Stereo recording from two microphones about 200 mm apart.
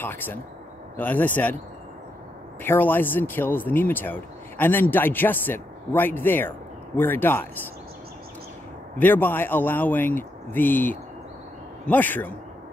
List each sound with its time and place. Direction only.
0.0 s speech: 10° left (ahead or behind)
2.6 s speech: 10° left (ahead or behind)
8.9 s speech: 10° left (ahead or behind)